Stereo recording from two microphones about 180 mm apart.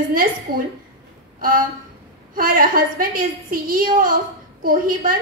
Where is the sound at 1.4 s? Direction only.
50° right (ahead or behind).